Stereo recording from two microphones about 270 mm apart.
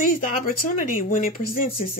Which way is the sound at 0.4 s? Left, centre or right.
Left.